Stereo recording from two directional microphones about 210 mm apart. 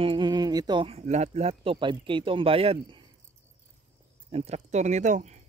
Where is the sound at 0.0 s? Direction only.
20° right (ahead or behind).